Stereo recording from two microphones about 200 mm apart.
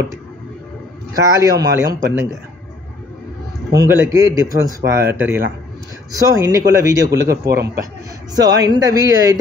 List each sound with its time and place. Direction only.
1.1 s speech: 15° right (ahead or behind)
3.7 s speech: 15° right (ahead or behind)
7.1 s a man's voice: 55° right (ahead or behind)
8.6 s speech: 20° right (ahead or behind)